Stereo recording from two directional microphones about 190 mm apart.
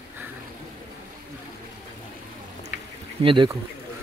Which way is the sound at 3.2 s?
25° right (ahead or behind).